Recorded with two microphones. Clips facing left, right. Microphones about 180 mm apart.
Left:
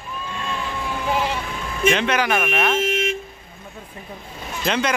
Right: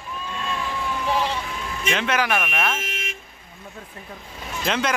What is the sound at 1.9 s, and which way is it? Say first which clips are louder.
Speech: left 1 dB; 5° right (ahead or behind).